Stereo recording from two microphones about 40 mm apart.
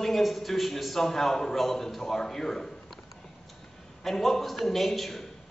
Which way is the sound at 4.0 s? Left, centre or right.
Centre.